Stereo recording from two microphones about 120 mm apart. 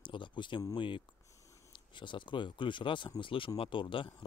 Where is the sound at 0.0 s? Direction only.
40° left (ahead or behind).